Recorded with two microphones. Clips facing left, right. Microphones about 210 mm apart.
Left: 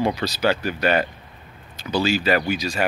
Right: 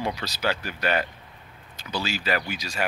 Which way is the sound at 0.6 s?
30° left (ahead or behind).